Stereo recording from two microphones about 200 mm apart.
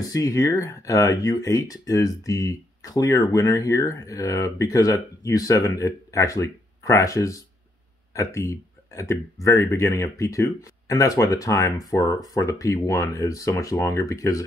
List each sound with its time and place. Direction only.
0.1 s speech: 15° left (ahead or behind)